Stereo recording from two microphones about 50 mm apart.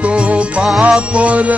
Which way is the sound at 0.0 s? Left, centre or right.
Right.